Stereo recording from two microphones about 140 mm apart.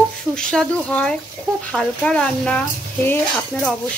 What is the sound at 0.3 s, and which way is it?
Speech, 5° left (ahead or behind).